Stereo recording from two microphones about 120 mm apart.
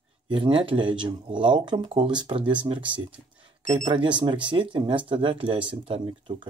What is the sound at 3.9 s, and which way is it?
Speech, 40° right (ahead or behind).